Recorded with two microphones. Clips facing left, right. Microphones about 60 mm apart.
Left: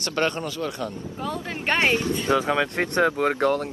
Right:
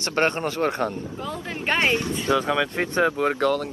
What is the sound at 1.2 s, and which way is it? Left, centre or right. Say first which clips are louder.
Speech: left 2 dB; centre.